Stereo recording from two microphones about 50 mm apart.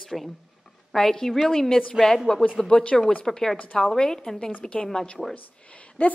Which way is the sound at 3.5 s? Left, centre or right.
Left.